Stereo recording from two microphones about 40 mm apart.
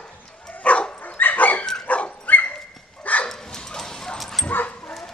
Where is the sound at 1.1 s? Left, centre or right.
Left.